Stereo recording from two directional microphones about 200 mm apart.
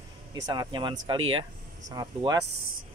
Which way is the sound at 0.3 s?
20° right (ahead or behind).